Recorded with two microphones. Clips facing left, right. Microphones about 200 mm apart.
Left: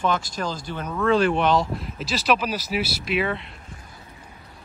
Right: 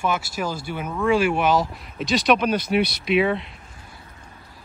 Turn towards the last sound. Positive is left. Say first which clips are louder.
# right 5 dB
turn(degrees=0)  # may be behind; listen again after turning